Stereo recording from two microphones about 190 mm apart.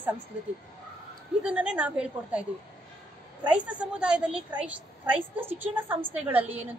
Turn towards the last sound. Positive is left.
turn(degrees=-10)  # may be behind; listen again after turning